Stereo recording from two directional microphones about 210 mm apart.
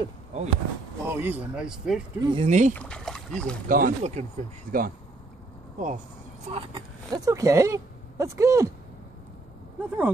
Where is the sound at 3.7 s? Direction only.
40° right (ahead or behind).